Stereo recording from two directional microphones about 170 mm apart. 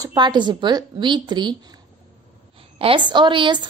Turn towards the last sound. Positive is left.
turn(degrees=-30)  # may be behind; listen again after turning